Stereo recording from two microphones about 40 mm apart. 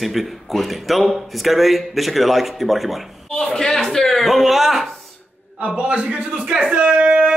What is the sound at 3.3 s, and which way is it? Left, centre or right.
A man's voice, centre.